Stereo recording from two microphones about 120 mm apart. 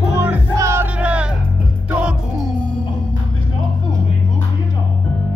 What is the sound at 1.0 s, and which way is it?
Music, 10° right (ahead or behind).